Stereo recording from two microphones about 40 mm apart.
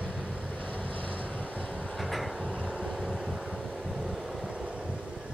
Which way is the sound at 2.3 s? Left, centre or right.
Right.